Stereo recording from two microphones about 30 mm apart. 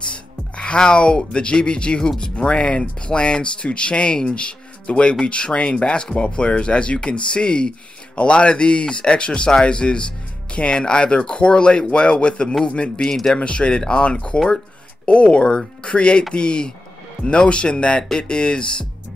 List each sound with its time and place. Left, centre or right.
0.1 s speech: left
13.0 s speech: centre
13.3 s speech: left